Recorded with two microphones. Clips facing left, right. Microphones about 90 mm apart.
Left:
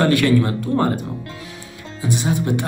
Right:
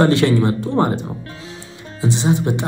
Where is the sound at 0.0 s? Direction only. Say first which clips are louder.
Right 1 dB; 25° right (ahead or behind).